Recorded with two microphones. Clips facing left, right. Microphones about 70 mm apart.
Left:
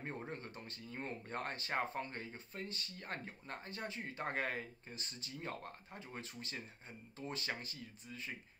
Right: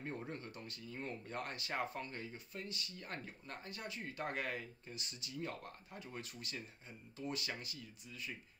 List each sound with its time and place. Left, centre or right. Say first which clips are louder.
0.0 s speech: even; left